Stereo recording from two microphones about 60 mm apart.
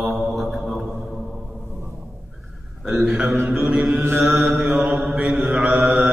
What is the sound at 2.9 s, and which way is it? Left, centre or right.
Speech, centre.